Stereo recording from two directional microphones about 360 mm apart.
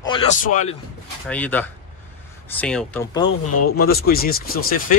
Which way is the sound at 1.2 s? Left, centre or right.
Centre.